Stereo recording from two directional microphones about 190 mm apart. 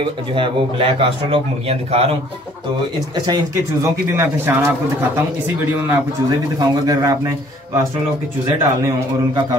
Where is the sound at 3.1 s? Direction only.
20° right (ahead or behind).